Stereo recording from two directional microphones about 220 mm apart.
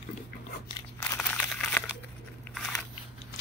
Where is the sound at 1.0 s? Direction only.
5° left (ahead or behind).